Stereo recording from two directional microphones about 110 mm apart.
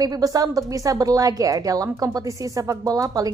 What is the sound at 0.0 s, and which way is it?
A woman's voice, 35° right (ahead or behind).